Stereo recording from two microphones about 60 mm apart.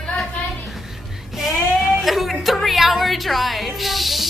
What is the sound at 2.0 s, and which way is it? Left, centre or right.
Music, centre.